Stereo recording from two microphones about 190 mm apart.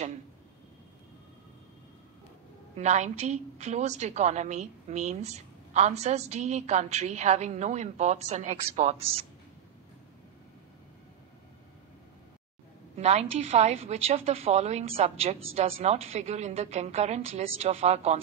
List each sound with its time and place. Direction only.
2.7 s a woman's voice: 35° right (ahead or behind)
12.9 s a woman's voice: 35° right (ahead or behind)